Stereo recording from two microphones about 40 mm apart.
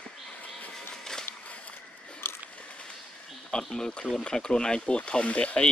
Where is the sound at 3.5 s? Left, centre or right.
Centre.